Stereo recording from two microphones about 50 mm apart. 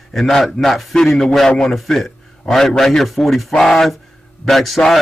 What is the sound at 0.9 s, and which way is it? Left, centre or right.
A man's voice, centre.